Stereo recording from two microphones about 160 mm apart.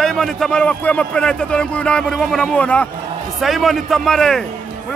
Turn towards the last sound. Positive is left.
turn(degrees=5)  # may be behind; listen again after turning